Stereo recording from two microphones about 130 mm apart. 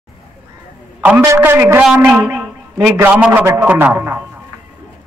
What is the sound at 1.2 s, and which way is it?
A man's voice, 20° right (ahead or behind).